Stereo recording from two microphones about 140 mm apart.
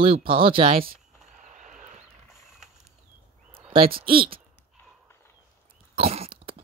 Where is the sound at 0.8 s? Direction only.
90° right.